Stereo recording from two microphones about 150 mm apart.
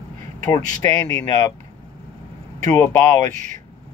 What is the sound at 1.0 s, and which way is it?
Speech, 25° left (ahead or behind).